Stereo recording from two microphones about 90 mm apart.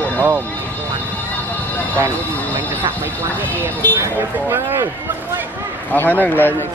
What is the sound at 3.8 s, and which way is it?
Speech, 20° left (ahead or behind).